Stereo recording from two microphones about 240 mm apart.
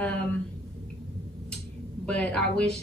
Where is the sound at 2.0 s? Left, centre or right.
Centre.